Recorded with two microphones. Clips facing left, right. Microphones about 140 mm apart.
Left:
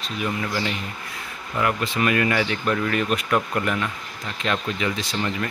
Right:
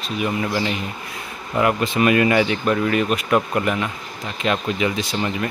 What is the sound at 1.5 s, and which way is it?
Speech, 20° right (ahead or behind).